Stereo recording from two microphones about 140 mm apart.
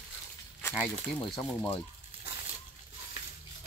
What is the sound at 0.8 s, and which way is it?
Speech, 5° left (ahead or behind).